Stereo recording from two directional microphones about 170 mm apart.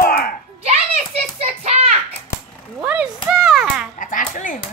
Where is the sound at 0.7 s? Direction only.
40° right (ahead or behind).